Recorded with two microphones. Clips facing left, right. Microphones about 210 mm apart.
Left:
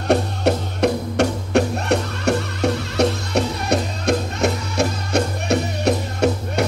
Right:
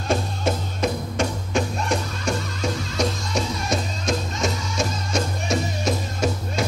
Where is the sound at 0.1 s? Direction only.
65° left (ahead or behind).